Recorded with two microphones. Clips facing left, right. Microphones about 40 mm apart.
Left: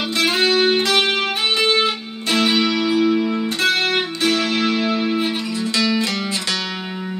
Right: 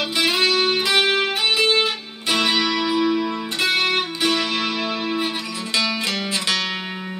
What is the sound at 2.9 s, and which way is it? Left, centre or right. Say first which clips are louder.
Music: left 3 dB; centre.